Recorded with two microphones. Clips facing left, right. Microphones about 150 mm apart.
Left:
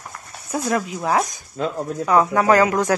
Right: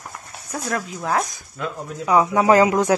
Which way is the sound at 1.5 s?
30° left (ahead or behind).